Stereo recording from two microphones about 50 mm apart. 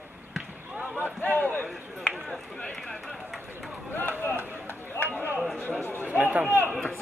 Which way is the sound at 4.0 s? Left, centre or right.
Left.